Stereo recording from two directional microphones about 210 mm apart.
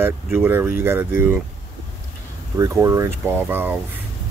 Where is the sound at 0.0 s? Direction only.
10° right (ahead or behind).